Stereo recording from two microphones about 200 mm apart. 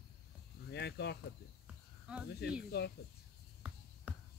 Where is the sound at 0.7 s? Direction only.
55° left (ahead or behind).